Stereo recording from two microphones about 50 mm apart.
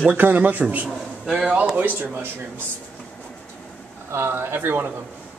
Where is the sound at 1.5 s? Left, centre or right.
Right.